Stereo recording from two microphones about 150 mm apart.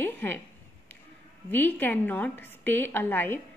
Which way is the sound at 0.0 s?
15° left (ahead or behind).